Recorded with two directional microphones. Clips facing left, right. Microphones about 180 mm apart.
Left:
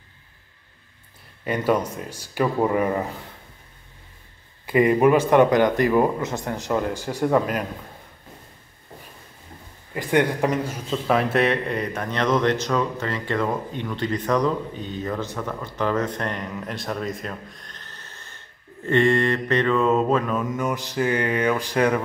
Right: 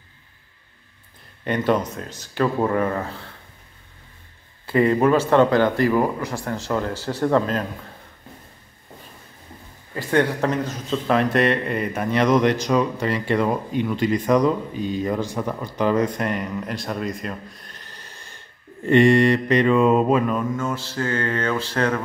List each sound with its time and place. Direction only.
1.4 s speech: 5° left (ahead or behind)
4.6 s speech: 15° left (ahead or behind)
9.9 s a man's voice: 15° left (ahead or behind); by 20.2 s 15° right (ahead or behind)
20.5 s speech: 15° left (ahead or behind)